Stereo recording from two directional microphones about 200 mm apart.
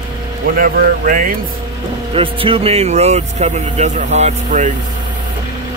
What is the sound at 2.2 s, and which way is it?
Speech, 25° right (ahead or behind).